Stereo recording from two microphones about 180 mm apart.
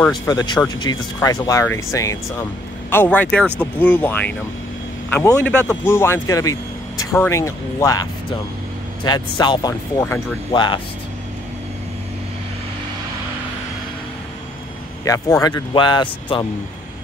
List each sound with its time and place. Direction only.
0.3 s speech: 20° left (ahead or behind)
10.5 s speech: 25° left (ahead or behind)
15.0 s speech: 20° left (ahead or behind)